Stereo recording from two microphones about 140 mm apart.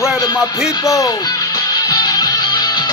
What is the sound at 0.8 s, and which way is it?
Speech, 20° left (ahead or behind).